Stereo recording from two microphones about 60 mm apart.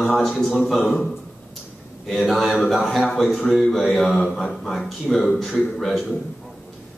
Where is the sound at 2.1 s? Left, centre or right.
Centre.